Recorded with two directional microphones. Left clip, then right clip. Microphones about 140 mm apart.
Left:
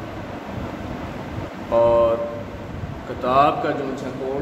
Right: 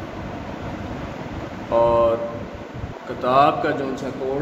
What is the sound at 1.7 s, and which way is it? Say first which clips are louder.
Speech: left 1 dB; 10° right (ahead or behind).